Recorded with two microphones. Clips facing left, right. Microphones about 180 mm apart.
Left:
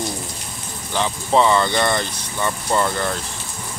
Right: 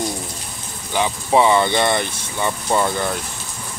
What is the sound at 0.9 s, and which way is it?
Speech, 10° right (ahead or behind).